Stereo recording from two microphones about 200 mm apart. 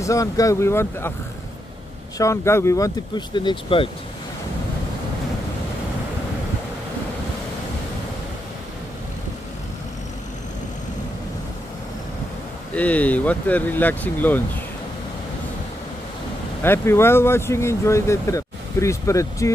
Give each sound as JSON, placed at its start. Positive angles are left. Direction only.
{"t": 0.0, "sound": "speech", "side_deg": 15}
{"t": 2.1, "sound": "speech", "side_deg": 15}
{"t": 12.7, "sound": "speech", "side_deg": 5}
{"t": 16.6, "sound": "speech", "side_deg": 10}